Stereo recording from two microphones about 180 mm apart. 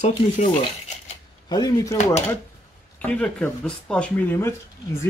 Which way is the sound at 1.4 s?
20° left (ahead or behind).